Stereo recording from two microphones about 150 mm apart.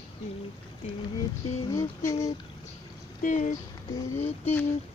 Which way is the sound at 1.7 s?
20° left (ahead or behind).